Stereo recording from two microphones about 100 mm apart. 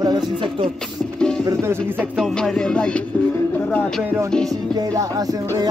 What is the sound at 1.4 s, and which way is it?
Speech, 25° right (ahead or behind).